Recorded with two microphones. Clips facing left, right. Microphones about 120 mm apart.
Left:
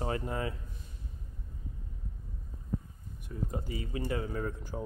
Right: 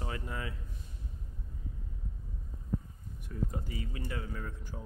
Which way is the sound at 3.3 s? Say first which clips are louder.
Left 1 dB; 15° left (ahead or behind).